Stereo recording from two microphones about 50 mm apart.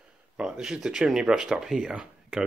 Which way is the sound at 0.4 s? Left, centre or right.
Centre.